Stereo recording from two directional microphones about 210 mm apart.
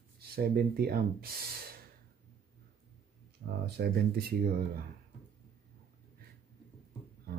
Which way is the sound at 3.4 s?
55° right (ahead or behind).